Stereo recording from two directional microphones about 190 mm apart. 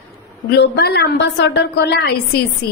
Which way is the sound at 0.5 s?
60° left (ahead or behind).